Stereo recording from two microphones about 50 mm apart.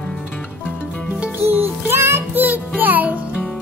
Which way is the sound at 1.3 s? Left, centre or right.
Right.